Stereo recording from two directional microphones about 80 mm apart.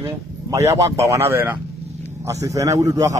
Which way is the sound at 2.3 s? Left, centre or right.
Right.